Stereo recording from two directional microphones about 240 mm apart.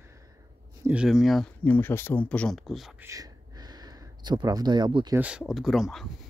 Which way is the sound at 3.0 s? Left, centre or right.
Centre.